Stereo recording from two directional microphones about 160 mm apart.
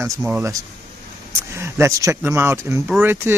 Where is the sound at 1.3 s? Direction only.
15° right (ahead or behind).